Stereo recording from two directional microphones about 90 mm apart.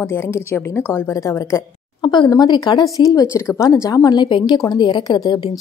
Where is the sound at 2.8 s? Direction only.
40° left (ahead or behind).